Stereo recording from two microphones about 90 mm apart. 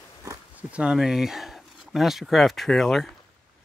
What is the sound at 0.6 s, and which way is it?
Speech, 15° right (ahead or behind).